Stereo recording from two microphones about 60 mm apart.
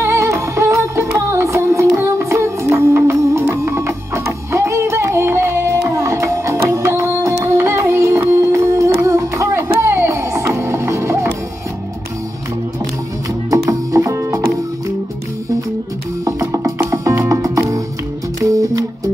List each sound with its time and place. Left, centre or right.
0.0 s music: right
13.5 s music: right
16.3 s music: right